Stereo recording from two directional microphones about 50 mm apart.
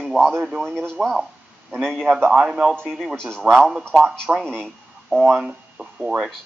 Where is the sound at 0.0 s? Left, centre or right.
Centre.